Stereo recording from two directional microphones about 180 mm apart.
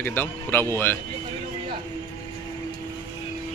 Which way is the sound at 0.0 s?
10° left (ahead or behind).